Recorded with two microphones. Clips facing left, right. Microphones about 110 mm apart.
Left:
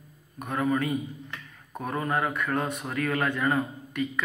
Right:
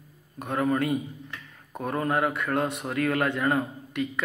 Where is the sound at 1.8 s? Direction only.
35° right (ahead or behind).